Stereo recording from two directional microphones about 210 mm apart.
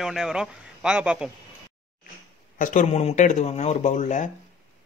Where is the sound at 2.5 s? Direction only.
35° left (ahead or behind).